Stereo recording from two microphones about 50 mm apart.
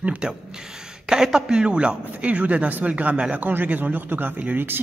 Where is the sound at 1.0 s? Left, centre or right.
Centre.